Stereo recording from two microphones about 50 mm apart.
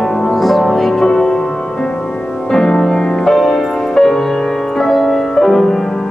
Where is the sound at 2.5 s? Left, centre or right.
Centre.